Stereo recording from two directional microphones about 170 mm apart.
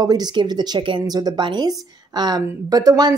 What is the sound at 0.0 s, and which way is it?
Speech, 25° right (ahead or behind).